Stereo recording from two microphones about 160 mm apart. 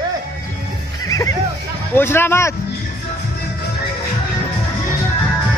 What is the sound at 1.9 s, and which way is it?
Speech, 15° left (ahead or behind).